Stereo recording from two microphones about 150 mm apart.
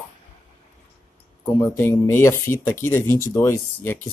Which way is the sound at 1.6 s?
15° left (ahead or behind).